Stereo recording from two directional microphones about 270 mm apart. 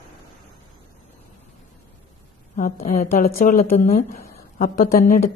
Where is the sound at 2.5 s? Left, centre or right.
Left.